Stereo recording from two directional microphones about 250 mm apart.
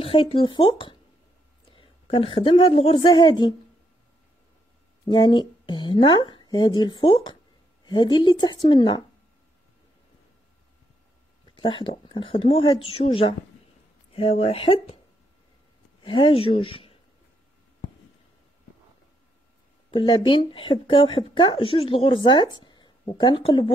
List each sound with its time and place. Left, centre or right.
0.0 s a woman's voice: left
5.0 s a woman's voice: centre
11.5 s speech: centre
16.0 s speech: left
19.9 s speech: centre